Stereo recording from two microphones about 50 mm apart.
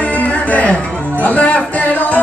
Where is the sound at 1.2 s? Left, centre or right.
Left.